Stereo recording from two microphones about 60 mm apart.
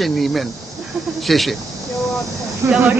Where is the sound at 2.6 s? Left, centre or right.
Right.